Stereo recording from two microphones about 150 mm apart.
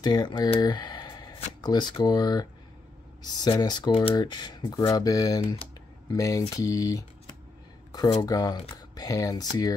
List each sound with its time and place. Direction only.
0.0 s speech: 25° left (ahead or behind)
8.2 s speech: 25° left (ahead or behind)